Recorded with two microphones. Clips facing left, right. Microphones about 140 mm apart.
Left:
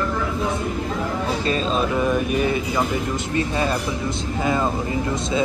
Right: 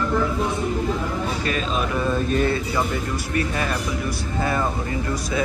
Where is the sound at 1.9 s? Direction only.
15° left (ahead or behind).